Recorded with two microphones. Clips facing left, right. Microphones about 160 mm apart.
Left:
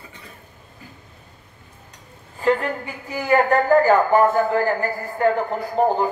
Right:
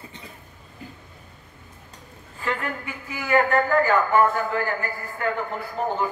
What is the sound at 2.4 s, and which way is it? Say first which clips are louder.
Speech: left 8 dB; 35° left (ahead or behind).